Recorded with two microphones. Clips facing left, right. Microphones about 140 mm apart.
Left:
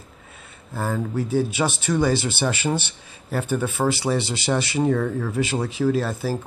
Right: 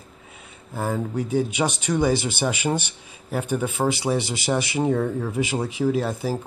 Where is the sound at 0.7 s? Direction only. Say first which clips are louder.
Even; 15° right (ahead or behind).